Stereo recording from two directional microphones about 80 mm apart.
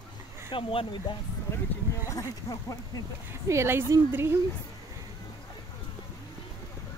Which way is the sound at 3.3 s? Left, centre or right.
Right.